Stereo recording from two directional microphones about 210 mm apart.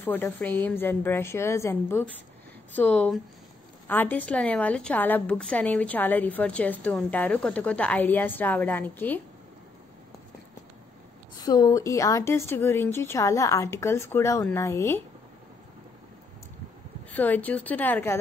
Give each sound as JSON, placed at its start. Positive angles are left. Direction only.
{"t": 0.0, "sound": "a woman's voice", "side_deg": 10}
{"t": 11.4, "sound": "a woman's voice", "side_deg": 20}
{"t": 17.1, "sound": "a woman's voice", "side_deg": 10}